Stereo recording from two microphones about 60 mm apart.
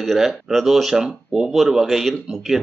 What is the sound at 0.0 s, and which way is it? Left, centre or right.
Speech, centre.